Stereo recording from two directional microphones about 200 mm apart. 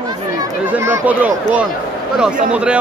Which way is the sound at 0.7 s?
10° right (ahead or behind).